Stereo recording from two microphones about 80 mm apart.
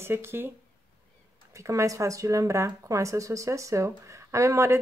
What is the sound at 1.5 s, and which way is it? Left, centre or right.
Speech, right.